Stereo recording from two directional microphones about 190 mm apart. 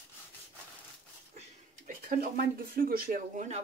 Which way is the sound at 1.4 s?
45° right (ahead or behind).